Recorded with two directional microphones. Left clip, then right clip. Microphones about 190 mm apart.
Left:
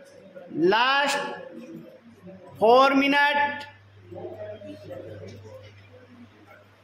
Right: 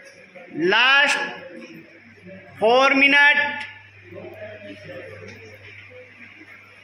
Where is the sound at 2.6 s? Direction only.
10° left (ahead or behind).